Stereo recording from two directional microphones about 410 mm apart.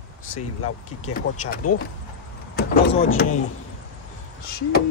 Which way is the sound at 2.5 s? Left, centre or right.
Left.